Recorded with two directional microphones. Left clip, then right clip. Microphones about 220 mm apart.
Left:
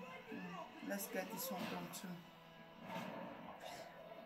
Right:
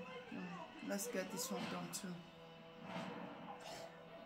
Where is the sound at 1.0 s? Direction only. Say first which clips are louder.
Right 1 dB; 15° right (ahead or behind).